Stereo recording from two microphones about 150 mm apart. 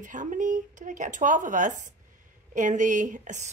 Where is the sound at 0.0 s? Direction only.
55° right (ahead or behind).